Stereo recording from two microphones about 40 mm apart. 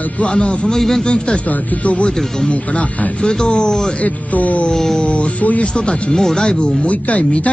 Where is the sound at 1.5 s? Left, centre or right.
Left.